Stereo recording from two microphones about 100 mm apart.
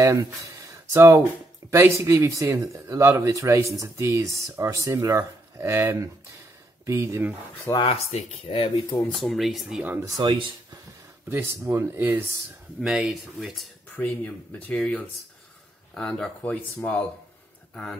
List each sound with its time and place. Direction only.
0.0 s speech: 30° right (ahead or behind)
7.8 s speech: 75° left (ahead or behind)
9.2 s speech: centre (ahead or behind)
10.1 s speech: 55° right (ahead or behind)
11.2 s speech: 25° right (ahead or behind)
12.8 s speech: 5° right (ahead or behind)
13.9 s speech: 15° left (ahead or behind)